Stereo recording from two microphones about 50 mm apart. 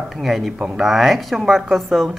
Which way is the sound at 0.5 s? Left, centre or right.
Centre.